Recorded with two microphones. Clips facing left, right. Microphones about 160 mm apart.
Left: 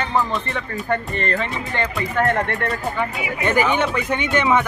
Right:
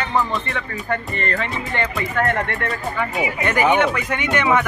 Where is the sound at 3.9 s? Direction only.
30° left (ahead or behind).